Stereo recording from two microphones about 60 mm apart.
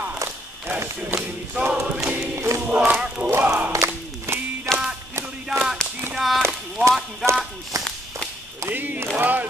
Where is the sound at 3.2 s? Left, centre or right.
Centre.